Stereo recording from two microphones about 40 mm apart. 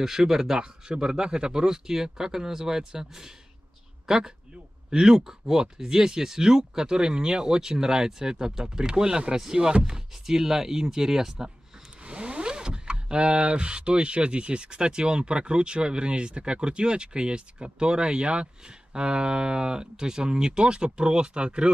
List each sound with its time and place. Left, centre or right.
0.0 s speech: centre
12.1 s speech: right